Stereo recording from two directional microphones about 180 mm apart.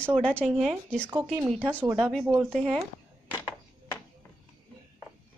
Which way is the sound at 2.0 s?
Centre (ahead or behind).